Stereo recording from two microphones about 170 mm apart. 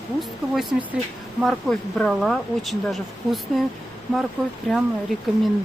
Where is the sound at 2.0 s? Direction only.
Centre (ahead or behind).